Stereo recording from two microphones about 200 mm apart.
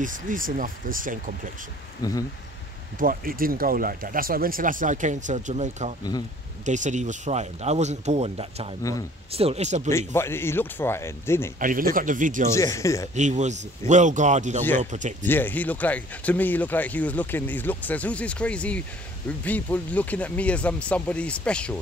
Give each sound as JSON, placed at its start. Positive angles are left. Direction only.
{"t": 0.0, "sound": "speech", "side_deg": -40}
{"t": 3.0, "sound": "speech", "side_deg": -45}
{"t": 9.8, "sound": "speech", "side_deg": 15}
{"t": 11.6, "sound": "speech", "side_deg": -45}
{"t": 12.5, "sound": "speech", "side_deg": 15}
{"t": 13.1, "sound": "speech", "side_deg": -35}
{"t": 15.2, "sound": "speech", "side_deg": 10}